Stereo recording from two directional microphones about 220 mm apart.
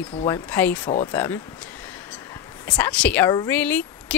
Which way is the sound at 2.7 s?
5° left (ahead or behind).